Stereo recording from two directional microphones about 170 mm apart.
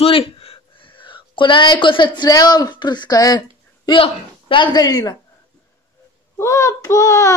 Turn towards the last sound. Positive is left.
turn(degrees=20)  # may be behind; listen again after turning